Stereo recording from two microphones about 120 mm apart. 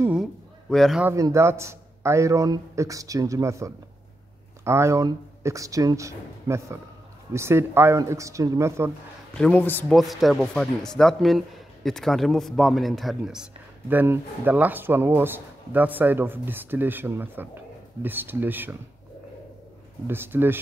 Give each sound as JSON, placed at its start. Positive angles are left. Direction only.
{"t": 0.7, "sound": "speech", "side_deg": 0}
{"t": 1.1, "sound": "a man's voice", "side_deg": -25}
{"t": 9.4, "sound": "a man's voice", "side_deg": 15}
{"t": 9.9, "sound": "speech", "side_deg": 0}
{"t": 13.9, "sound": "speech", "side_deg": -15}
{"t": 20.1, "sound": "speech", "side_deg": -15}